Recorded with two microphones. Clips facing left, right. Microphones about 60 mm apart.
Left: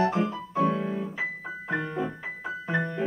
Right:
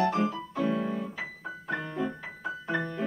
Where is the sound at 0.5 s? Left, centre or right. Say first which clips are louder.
Left 7 dB; centre.